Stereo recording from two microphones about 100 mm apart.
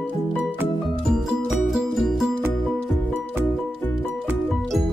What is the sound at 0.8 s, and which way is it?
Music, 5° right (ahead or behind).